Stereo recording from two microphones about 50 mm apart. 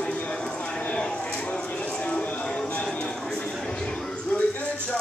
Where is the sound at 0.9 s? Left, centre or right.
Centre.